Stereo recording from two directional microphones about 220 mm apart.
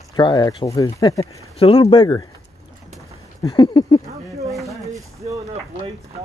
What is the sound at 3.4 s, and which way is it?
Speech, 20° left (ahead or behind).